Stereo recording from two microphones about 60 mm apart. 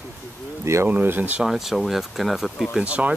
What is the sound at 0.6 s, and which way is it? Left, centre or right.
Speech, right.